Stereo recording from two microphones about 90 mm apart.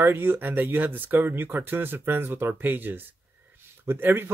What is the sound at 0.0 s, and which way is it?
A man's voice, 25° right (ahead or behind).